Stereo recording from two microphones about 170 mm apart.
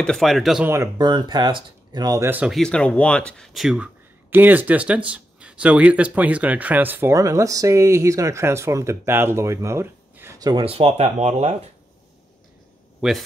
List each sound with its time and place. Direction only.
0.0 s speech: centre (ahead or behind)
0.7 s speech: 20° right (ahead or behind)
2.5 s speech: 5° left (ahead or behind); by 10.5 s 15° right (ahead or behind)
10.5 s speech: 35° right (ahead or behind)
13.0 s speech: centre (ahead or behind)